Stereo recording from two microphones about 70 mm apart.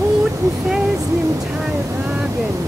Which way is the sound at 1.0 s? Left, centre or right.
Right.